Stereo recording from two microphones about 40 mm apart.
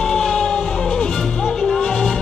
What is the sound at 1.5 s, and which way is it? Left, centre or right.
Music, centre.